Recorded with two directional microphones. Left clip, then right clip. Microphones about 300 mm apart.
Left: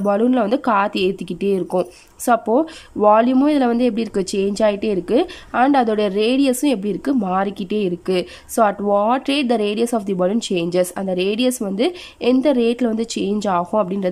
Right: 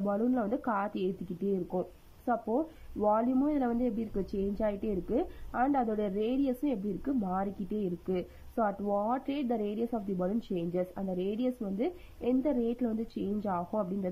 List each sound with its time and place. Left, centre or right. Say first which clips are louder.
0.0 s speech: left 14 dB; centre
8.8 s speech: left 15 dB; left
9.1 s speech: left 15 dB; centre